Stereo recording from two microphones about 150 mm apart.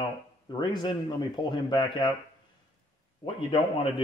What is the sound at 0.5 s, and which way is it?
Speech, 30° left (ahead or behind).